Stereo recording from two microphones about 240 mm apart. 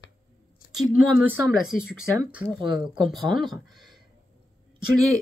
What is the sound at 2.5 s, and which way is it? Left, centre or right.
Speech, centre.